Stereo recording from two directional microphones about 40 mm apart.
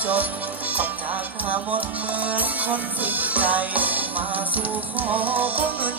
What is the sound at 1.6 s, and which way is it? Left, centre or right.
Music, right.